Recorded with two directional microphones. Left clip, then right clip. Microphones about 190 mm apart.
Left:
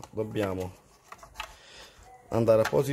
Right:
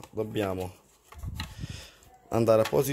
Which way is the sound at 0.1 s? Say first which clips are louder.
Even; 10° right (ahead or behind).